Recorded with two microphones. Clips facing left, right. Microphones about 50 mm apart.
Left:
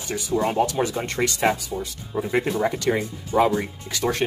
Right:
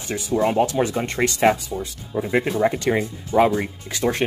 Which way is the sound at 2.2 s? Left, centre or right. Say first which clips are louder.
Right 2 dB; centre.